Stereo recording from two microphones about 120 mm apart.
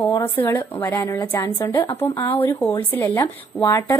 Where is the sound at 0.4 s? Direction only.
15° left (ahead or behind).